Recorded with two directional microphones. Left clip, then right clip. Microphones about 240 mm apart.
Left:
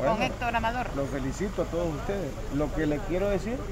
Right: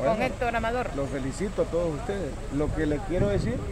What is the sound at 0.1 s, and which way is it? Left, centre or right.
Speech, right.